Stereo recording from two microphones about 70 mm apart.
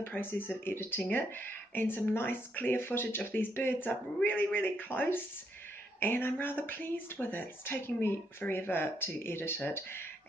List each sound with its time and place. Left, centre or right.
0.0 s speech: left